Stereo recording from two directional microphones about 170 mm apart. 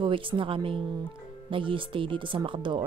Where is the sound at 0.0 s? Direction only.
30° right (ahead or behind).